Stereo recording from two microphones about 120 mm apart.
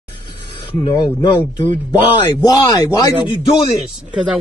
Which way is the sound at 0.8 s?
40° left (ahead or behind).